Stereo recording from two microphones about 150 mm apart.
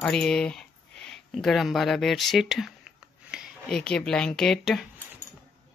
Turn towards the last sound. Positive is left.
turn(degrees=0)  # may be behind; listen again after turning